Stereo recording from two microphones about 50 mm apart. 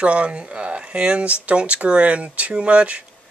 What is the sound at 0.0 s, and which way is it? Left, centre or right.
Speech, right.